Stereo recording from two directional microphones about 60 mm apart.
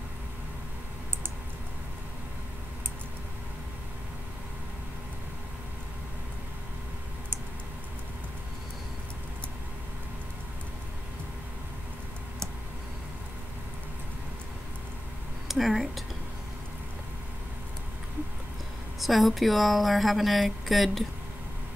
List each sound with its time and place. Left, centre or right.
15.4 s speech: centre
18.9 s a woman's voice: centre